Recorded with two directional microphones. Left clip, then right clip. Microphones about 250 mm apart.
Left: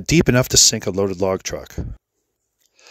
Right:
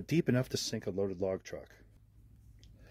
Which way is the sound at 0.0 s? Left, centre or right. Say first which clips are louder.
Left 16 dB; left.